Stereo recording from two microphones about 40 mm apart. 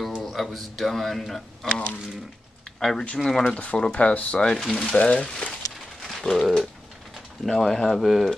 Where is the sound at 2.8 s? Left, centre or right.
Centre.